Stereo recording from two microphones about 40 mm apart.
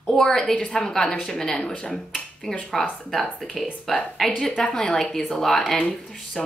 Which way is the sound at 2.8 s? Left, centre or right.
Centre.